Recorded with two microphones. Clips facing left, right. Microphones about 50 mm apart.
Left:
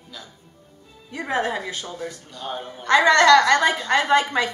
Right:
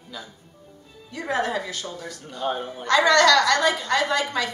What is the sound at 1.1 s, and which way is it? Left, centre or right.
A woman's voice, left.